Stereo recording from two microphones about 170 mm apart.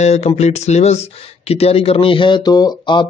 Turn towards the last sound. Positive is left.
turn(degrees=25)  # may be behind; listen again after turning